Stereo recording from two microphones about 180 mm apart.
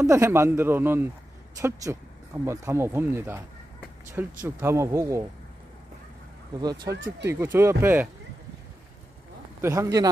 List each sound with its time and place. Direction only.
0.0 s a man's voice: 15° right (ahead or behind)
6.5 s a man's voice: 20° right (ahead or behind)
9.6 s a man's voice: 15° right (ahead or behind)